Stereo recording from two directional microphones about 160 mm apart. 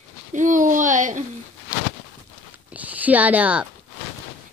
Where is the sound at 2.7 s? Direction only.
10° right (ahead or behind).